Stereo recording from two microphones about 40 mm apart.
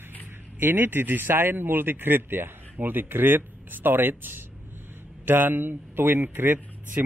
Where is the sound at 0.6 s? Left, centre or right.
Right.